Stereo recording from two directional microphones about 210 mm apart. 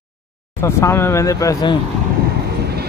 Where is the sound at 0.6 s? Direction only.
10° left (ahead or behind).